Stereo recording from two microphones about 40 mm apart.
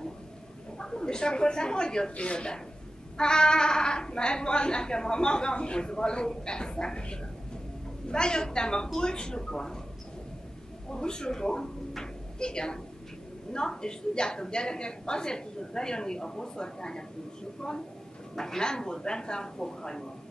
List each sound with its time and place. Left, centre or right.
0.7 s a woman's voice: centre
10.9 s a woman's voice: centre